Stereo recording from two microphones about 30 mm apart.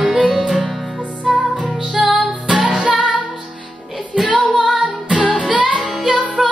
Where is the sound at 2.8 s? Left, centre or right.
Right.